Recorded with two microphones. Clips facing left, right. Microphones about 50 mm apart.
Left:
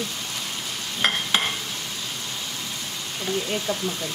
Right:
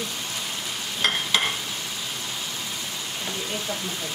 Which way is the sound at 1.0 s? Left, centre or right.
Left.